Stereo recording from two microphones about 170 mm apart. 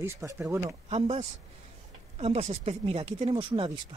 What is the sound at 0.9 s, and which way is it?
Speech, 35° right (ahead or behind).